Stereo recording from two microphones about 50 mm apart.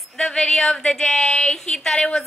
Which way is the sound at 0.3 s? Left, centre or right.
Centre.